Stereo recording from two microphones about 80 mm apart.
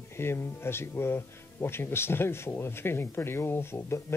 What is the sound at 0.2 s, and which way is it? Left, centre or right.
Speech, left.